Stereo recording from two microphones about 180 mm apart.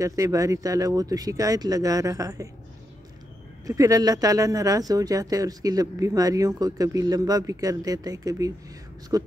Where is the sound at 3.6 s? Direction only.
20° right (ahead or behind).